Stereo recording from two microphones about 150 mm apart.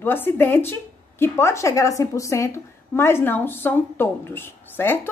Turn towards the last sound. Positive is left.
turn(degrees=15)  # may be behind; listen again after turning